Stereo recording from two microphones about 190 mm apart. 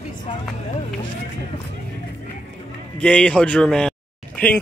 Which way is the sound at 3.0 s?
5° left (ahead or behind).